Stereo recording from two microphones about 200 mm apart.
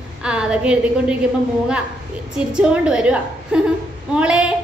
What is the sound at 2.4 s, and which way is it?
A woman's voice, 5° right (ahead or behind).